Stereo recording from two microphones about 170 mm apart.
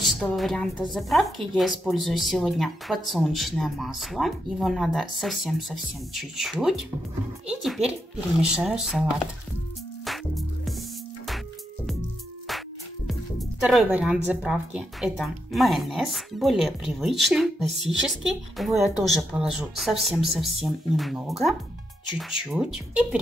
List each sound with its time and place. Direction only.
0.0 s speech: centre (ahead or behind)
10.0 s music: centre (ahead or behind)
12.4 s speech: centre (ahead or behind)